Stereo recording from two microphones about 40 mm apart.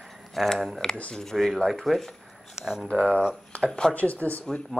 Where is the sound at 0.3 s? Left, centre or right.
Centre.